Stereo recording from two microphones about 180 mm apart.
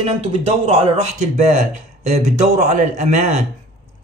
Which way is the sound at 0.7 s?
35° right (ahead or behind).